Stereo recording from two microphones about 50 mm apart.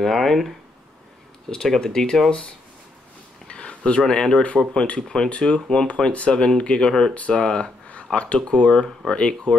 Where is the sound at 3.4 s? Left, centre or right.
Left.